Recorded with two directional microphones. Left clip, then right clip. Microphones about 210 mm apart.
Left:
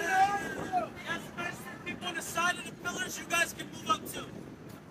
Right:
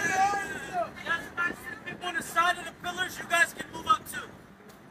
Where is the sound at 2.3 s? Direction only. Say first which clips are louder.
Right 5 dB; 15° left (ahead or behind).